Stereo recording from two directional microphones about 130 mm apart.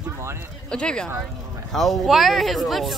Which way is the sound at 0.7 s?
5° left (ahead or behind).